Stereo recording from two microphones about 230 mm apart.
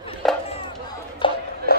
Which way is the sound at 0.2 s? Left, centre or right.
Centre.